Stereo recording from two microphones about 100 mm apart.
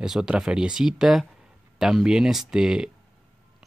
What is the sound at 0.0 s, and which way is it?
Speech, 5° right (ahead or behind).